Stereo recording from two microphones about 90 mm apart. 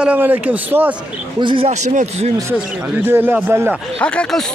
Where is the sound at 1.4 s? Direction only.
65° right (ahead or behind).